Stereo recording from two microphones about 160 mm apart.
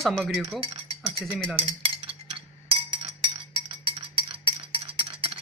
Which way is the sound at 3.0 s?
30° right (ahead or behind).